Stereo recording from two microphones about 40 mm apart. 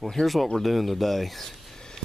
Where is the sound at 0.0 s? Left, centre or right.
Centre.